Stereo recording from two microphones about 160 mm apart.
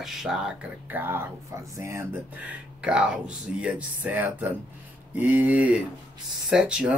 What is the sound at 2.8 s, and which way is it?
Speech, 5° right (ahead or behind).